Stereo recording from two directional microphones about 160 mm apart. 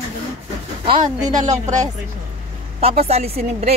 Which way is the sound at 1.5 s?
50° right (ahead or behind).